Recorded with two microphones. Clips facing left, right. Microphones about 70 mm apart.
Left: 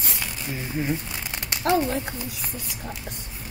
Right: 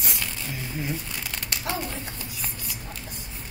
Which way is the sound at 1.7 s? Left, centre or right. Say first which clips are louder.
Left 10 dB; left.